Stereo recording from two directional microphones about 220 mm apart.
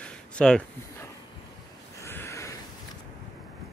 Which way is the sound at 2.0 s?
10° left (ahead or behind).